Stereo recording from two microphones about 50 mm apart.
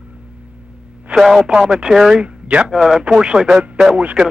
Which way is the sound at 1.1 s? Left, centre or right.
Centre.